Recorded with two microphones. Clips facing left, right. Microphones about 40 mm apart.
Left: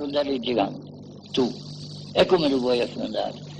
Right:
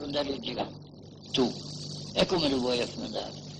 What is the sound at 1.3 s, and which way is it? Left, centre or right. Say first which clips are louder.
Speech: left 4 dB; centre.